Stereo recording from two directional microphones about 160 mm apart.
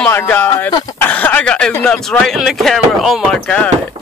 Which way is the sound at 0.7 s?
25° left (ahead or behind).